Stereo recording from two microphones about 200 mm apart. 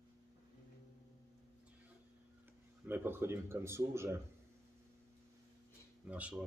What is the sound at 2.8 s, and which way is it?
Speech, 10° right (ahead or behind).